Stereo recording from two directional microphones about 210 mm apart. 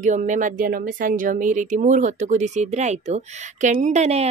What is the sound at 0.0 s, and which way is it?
Speech, 35° right (ahead or behind).